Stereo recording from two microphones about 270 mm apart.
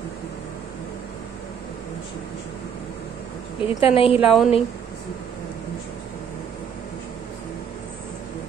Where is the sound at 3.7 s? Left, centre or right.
Centre.